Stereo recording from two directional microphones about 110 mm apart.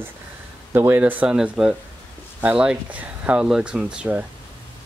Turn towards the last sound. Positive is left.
turn(degrees=-10)  # may be behind; listen again after turning